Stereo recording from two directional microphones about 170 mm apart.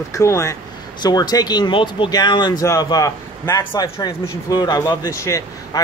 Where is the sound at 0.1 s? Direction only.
20° left (ahead or behind).